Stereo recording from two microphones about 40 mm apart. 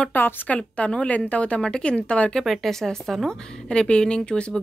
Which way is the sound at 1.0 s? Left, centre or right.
Left.